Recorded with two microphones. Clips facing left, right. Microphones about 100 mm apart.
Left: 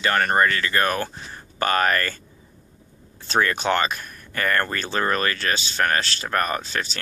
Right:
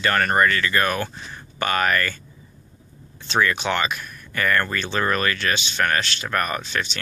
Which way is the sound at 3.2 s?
45° left (ahead or behind).